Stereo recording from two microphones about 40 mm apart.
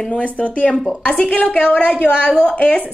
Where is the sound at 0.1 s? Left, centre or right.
Left.